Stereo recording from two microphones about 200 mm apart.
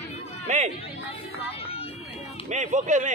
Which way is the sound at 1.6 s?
30° left (ahead or behind).